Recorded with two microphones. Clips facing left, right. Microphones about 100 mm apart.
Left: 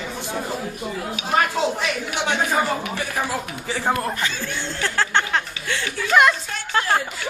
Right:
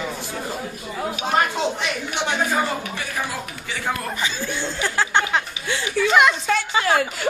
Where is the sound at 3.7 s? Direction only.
30° left (ahead or behind).